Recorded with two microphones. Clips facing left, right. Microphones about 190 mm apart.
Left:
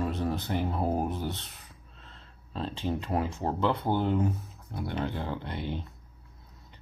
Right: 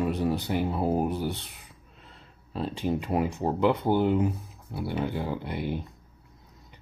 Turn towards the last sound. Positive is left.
turn(degrees=-10)  # may be behind; listen again after turning